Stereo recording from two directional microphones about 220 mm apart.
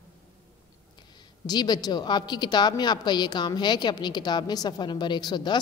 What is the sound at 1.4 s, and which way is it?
A woman's voice, 20° left (ahead or behind).